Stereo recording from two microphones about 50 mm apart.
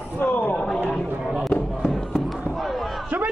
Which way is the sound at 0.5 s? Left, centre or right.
Centre.